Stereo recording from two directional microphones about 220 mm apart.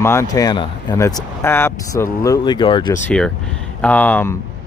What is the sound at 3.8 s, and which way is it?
Speech, 5° left (ahead or behind).